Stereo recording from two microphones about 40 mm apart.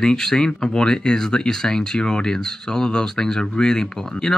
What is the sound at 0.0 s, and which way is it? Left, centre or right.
Speech, centre.